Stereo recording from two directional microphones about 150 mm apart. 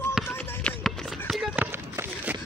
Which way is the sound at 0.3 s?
10° left (ahead or behind).